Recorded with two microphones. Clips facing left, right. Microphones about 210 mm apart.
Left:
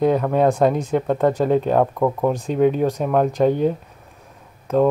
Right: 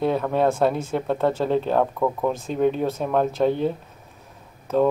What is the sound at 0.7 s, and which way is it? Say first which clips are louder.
Speech: left 4 dB; 15° left (ahead or behind).